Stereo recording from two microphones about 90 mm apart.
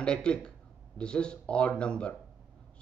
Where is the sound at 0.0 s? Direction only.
10° left (ahead or behind).